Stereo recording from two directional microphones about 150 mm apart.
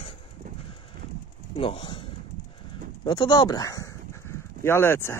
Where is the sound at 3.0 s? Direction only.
30° left (ahead or behind).